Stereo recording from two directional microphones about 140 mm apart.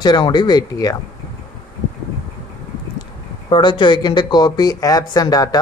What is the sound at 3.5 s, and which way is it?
Speech, 35° left (ahead or behind).